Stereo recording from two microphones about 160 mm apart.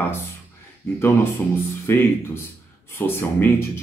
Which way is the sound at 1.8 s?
15° left (ahead or behind).